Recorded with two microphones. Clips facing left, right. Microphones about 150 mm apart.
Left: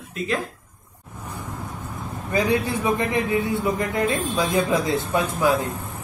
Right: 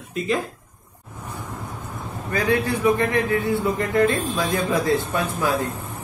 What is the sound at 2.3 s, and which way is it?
A man's voice, 25° left (ahead or behind).